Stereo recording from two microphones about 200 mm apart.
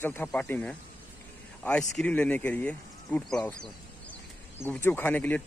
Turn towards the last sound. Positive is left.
turn(degrees=10)  # may be behind; listen again after turning